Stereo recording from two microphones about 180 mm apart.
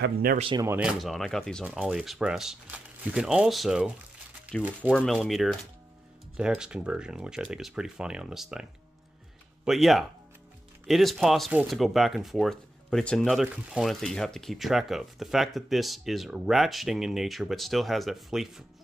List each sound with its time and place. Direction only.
0.0 s speech: 60° right (ahead or behind)
0.6 s speech: 10° right (ahead or behind)
9.7 s speech: centre (ahead or behind)